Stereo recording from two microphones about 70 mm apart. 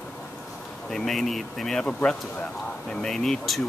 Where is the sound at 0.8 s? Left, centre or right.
Centre.